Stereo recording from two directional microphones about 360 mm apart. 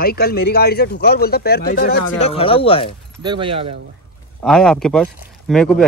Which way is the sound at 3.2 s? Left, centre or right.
Centre.